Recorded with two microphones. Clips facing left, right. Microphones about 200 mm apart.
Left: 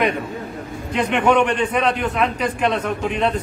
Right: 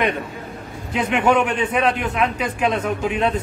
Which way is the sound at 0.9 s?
5° right (ahead or behind).